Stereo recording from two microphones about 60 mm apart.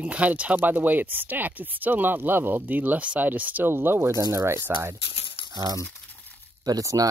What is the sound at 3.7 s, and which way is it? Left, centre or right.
Speech, right.